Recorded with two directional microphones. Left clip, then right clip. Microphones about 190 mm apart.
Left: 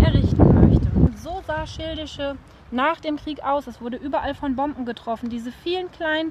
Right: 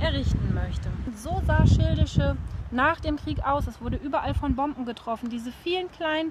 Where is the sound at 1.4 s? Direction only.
15° left (ahead or behind).